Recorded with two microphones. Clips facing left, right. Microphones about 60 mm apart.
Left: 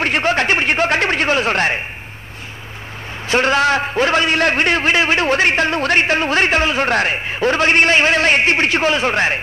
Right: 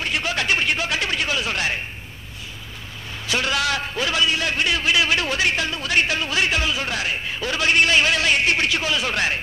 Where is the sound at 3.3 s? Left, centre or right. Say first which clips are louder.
Left 8 dB; left.